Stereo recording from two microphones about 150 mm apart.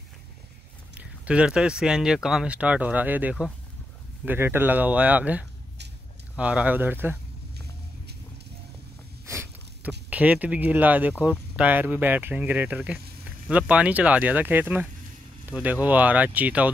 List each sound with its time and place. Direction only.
0.9 s speech: 10° right (ahead or behind)
7.5 s vehicle: 90° right
9.2 s a sound: 20° right (ahead or behind)
11.2 s speech: 10° right (ahead or behind)